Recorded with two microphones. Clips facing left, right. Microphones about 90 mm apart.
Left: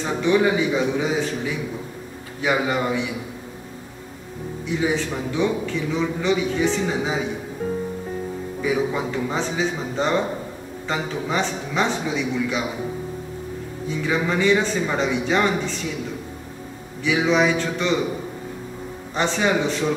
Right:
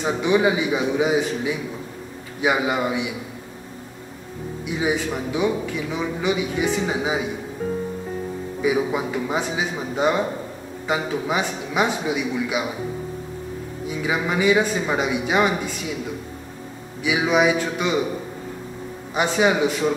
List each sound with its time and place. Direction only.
0.0 s a man's voice: 15° right (ahead or behind)
4.6 s a man's voice: 15° right (ahead or behind)
7.6 s music: centre (ahead or behind)
8.5 s a man's voice: 10° right (ahead or behind)
13.8 s a man's voice: 10° right (ahead or behind)
17.0 s a man's voice: 15° right (ahead or behind)
19.1 s a man's voice: 10° right (ahead or behind)